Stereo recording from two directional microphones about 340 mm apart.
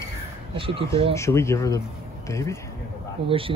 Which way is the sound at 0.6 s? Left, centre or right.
Centre.